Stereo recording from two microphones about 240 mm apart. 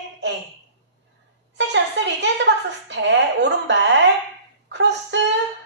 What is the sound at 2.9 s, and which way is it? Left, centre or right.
A woman's voice, right.